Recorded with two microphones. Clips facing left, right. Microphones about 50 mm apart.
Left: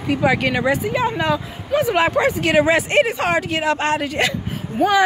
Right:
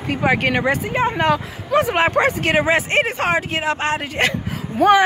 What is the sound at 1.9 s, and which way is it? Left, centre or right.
Speech, right.